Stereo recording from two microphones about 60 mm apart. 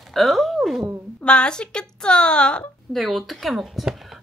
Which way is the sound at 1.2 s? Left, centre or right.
Centre.